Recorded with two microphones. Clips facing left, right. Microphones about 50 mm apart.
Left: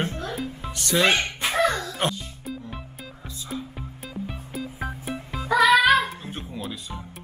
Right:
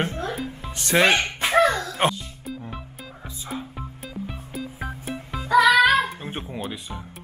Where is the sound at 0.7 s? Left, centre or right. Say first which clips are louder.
Right 2 dB; right.